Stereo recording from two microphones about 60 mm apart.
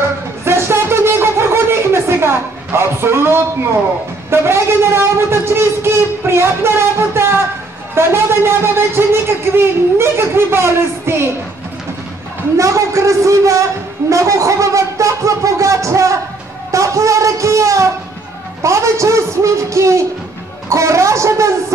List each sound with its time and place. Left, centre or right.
0.5 s a sound: right
4.3 s speech: right
12.5 s a man's voice: right